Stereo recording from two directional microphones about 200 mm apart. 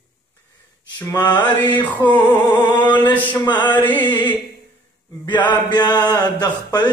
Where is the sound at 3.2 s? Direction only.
20° left (ahead or behind).